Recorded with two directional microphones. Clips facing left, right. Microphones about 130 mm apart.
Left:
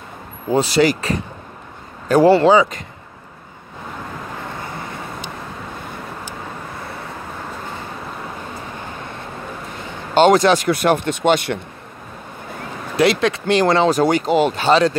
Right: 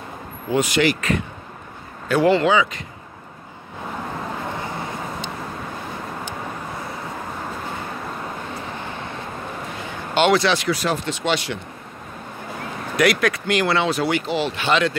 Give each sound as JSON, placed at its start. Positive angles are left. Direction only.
{"t": 0.5, "sound": "speech", "side_deg": 35}
{"t": 10.1, "sound": "speech", "side_deg": 40}
{"t": 12.9, "sound": "speech", "side_deg": 25}